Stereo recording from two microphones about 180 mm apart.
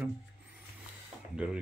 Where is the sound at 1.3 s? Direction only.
5° right (ahead or behind).